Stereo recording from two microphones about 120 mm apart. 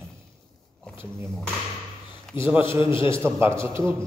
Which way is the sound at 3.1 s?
20° right (ahead or behind).